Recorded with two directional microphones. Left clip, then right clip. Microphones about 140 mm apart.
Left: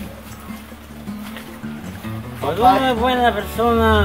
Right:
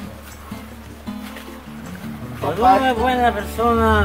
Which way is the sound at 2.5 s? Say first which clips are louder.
Even; centre (ahead or behind).